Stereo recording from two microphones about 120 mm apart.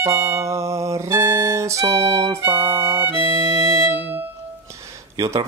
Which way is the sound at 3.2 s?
35° right (ahead or behind).